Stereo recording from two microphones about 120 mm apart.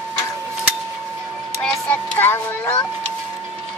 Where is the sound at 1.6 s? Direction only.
15° left (ahead or behind).